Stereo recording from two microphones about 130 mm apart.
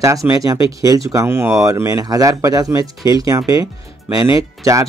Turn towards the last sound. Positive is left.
turn(degrees=-25)  # may be behind; listen again after turning